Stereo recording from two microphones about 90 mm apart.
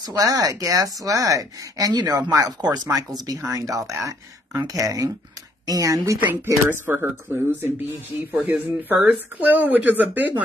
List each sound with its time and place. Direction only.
0.1 s a woman's voice: 40° right (ahead or behind)
6.2 s speech: 25° right (ahead or behind)